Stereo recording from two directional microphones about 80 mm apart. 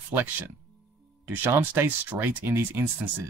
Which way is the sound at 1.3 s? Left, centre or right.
Right.